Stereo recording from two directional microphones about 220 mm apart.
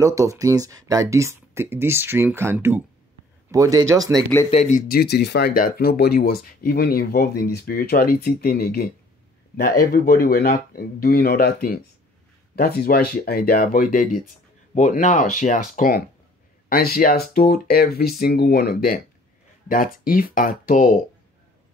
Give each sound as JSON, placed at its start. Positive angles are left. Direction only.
{"t": 0.0, "sound": "speech", "side_deg": -15}
{"t": 4.5, "sound": "speech", "side_deg": 35}